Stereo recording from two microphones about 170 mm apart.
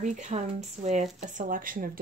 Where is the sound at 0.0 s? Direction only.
45° right (ahead or behind).